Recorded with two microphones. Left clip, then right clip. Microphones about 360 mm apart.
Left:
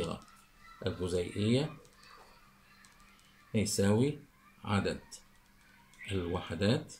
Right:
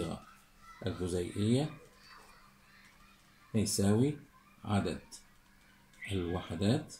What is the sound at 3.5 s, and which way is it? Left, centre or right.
Speech, left.